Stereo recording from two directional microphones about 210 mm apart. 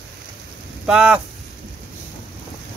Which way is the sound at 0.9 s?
5° right (ahead or behind).